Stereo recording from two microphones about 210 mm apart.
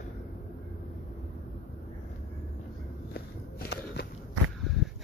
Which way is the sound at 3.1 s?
50° left (ahead or behind).